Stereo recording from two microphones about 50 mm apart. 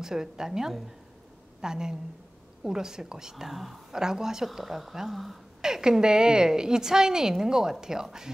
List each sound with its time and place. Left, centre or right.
0.0 s a woman's voice: centre
5.6 s a woman's voice: centre